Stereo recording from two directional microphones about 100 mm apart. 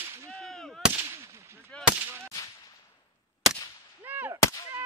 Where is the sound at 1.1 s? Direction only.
30° right (ahead or behind).